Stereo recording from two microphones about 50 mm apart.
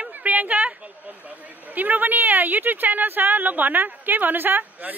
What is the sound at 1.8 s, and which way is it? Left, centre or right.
Speech, right.